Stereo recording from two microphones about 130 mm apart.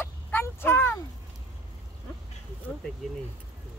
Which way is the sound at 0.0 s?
15° left (ahead or behind).